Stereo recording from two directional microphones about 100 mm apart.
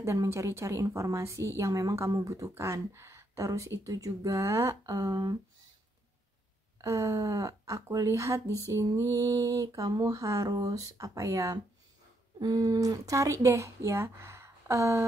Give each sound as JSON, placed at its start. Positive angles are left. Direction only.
{"t": 0.0, "sound": "a woman's voice", "side_deg": -30}
{"t": 6.8, "sound": "a woman's voice", "side_deg": -35}